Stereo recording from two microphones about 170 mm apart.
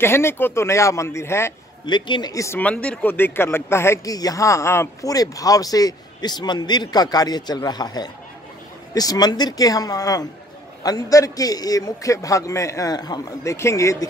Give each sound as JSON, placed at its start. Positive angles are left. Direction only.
{"t": 0.0, "sound": "speech", "side_deg": 15}
{"t": 1.9, "sound": "speech", "side_deg": 25}